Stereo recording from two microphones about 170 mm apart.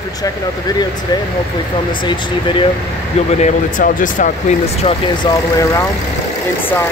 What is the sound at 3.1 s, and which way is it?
Speech, 40° left (ahead or behind).